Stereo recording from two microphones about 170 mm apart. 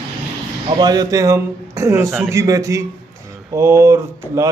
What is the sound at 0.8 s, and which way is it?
A man's voice, 25° right (ahead or behind).